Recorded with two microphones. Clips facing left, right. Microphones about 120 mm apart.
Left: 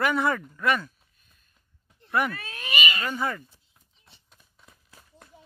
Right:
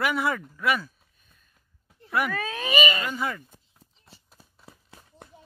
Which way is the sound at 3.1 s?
Centre (ahead or behind).